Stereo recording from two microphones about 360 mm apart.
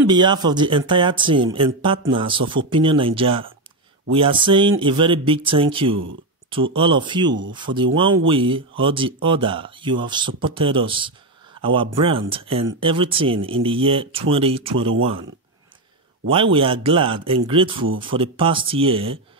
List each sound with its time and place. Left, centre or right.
0.1 s speech: centre
16.5 s speech: centre